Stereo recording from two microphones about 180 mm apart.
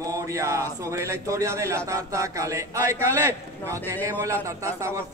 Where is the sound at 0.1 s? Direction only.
15° right (ahead or behind).